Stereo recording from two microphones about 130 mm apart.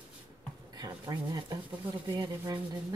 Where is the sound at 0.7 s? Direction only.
30° right (ahead or behind).